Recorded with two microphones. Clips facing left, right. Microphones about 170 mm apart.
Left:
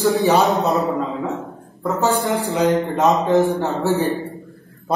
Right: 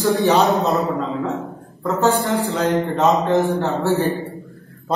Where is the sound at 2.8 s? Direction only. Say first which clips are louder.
Even; 20° left (ahead or behind).